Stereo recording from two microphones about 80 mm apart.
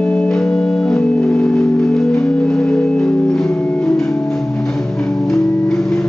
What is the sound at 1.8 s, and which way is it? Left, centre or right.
Music, centre.